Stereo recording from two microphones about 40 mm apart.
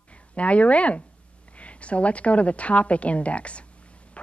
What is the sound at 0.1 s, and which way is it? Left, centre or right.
A woman's voice, left.